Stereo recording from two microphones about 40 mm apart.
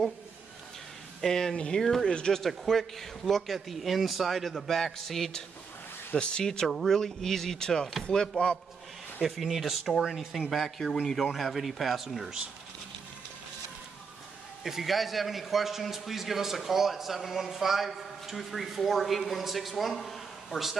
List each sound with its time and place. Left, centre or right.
1.2 s speech: centre
2.4 s a man's voice: centre
6.1 s speech: left
6.4 s speech: centre
6.7 s a man's voice: centre
9.2 s a man's voice: centre
14.6 s a man's voice: centre